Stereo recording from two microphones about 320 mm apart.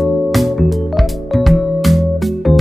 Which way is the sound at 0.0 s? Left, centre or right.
Centre.